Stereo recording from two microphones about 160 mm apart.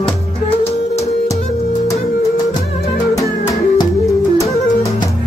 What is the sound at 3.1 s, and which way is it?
Music, 20° left (ahead or behind).